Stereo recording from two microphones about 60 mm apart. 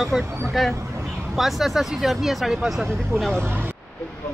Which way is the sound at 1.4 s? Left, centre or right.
Centre.